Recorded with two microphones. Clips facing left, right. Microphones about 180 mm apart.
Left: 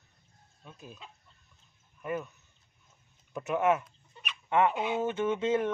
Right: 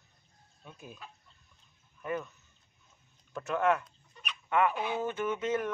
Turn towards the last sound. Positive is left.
turn(degrees=25)  # may be behind; listen again after turning